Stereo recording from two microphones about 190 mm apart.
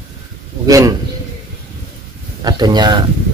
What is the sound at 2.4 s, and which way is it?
Speech, 20° right (ahead or behind).